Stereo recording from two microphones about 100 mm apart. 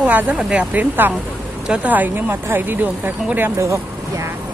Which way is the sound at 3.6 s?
30° right (ahead or behind).